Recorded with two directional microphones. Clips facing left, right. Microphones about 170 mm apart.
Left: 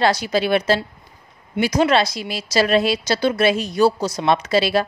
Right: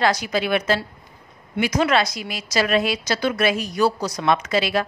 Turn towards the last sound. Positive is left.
turn(degrees=30)  # may be behind; listen again after turning